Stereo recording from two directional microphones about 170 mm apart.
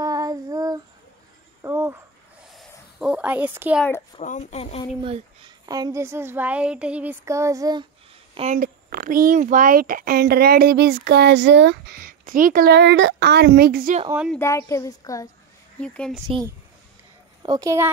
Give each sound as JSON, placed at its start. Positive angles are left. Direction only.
{"t": 0.0, "sound": "child singing", "side_deg": -20}
{"t": 1.6, "sound": "a sound", "side_deg": -15}
{"t": 2.4, "sound": "a sound", "side_deg": 0}
{"t": 4.2, "sound": "speech", "side_deg": 45}
{"t": 5.0, "sound": "speech", "side_deg": -35}
{"t": 5.7, "sound": "speech", "side_deg": -20}
{"t": 8.5, "sound": "a child's voice", "side_deg": -60}
{"t": 14.4, "sound": "a woman's voice", "side_deg": 15}
{"t": 15.8, "sound": "a woman's voice", "side_deg": 5}
{"t": 17.4, "sound": "a woman's voice", "side_deg": -25}